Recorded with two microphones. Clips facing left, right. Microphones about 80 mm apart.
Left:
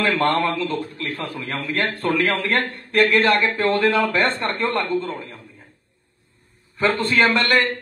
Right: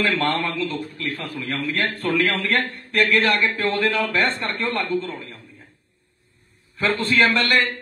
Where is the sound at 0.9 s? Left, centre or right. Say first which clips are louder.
Left 1 dB; left.